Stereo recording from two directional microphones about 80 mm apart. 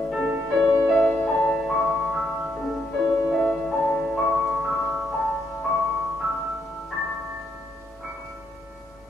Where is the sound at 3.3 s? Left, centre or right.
Centre.